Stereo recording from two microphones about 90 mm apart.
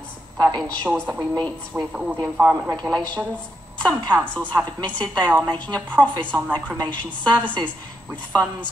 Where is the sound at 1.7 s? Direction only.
20° right (ahead or behind).